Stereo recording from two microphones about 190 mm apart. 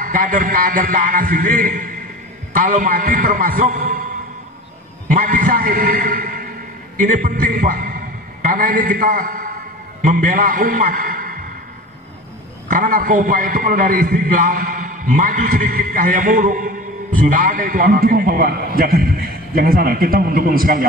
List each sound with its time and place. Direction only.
0.0 s a man's voice: 45° right (ahead or behind)
5.0 s a man's voice: 45° right (ahead or behind)
12.6 s a man's voice: 45° right (ahead or behind)